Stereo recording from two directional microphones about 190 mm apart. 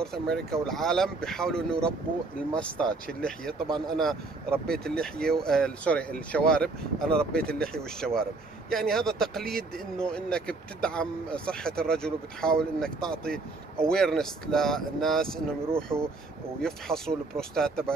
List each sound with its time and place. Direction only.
0.0 s speech: 5° left (ahead or behind)
7.3 s speech: 55° right (ahead or behind)
7.6 s speech: 5° left (ahead or behind)
15.9 s speech: 10° right (ahead or behind)
16.6 s speech: centre (ahead or behind)